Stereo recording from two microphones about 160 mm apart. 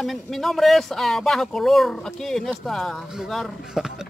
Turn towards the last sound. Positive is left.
turn(degrees=0)  # may be behind; listen again after turning